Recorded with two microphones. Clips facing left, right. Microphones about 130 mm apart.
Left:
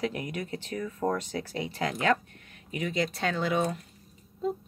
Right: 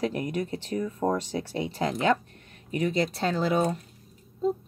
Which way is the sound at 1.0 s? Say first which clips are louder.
Right 2 dB; 20° right (ahead or behind).